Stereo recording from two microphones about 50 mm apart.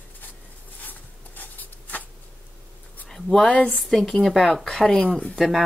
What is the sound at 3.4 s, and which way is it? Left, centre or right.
Speech, left.